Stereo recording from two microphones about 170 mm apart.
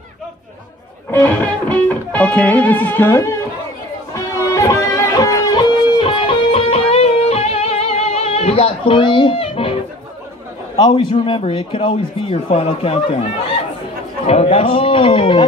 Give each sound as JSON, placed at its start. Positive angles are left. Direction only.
{"t": 1.1, "sound": "music", "side_deg": 10}
{"t": 10.8, "sound": "a man's voice", "side_deg": 25}
{"t": 14.2, "sound": "a man's voice", "side_deg": 35}